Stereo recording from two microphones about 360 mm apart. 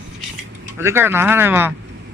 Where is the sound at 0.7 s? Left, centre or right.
Centre.